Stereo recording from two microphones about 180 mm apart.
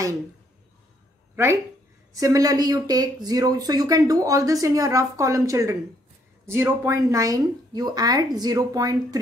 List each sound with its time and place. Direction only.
1.3 s speech: 15° right (ahead or behind)